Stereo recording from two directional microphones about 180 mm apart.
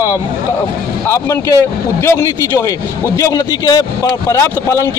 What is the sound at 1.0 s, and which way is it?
A man's voice, 15° left (ahead or behind).